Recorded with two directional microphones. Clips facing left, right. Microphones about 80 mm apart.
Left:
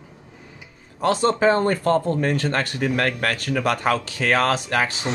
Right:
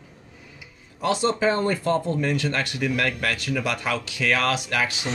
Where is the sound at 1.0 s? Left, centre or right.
Left.